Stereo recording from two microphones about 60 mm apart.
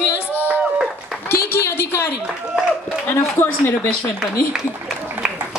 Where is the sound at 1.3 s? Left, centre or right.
Left.